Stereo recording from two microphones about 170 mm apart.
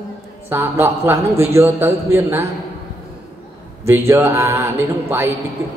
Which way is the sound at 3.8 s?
15° right (ahead or behind).